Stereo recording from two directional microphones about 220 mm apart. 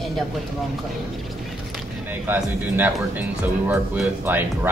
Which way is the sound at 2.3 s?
10° right (ahead or behind).